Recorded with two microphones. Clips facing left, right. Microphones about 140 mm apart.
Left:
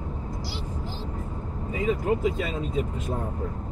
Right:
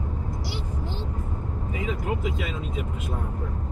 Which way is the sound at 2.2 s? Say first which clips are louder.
Left 3 dB; 40° left (ahead or behind).